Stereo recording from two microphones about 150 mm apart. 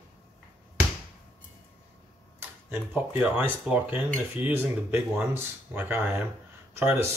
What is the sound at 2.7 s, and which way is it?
Speech, 10° right (ahead or behind).